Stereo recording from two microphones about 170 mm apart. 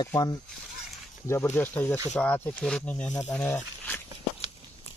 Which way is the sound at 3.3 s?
10° left (ahead or behind).